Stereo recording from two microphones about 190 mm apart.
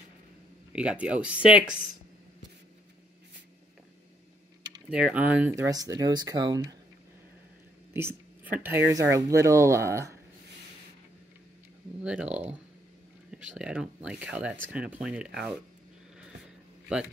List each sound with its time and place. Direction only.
0.7 s speech: 5° right (ahead or behind)
4.8 s speech: 5° right (ahead or behind)
5.7 s speech: 20° right (ahead or behind)
7.9 s speech: 10° right (ahead or behind)
12.0 s speech: 5° right (ahead or behind)
13.3 s speech: 5° right (ahead or behind)